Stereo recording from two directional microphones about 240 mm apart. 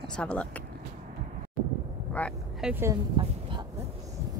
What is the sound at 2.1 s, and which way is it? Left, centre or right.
Vehicle, centre.